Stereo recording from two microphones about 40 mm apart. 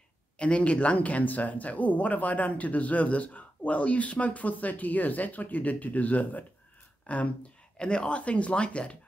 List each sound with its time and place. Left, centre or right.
0.4 s speech: left
8.2 s speech: left